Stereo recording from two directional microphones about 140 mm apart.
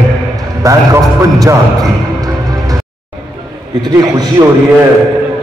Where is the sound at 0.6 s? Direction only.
25° right (ahead or behind).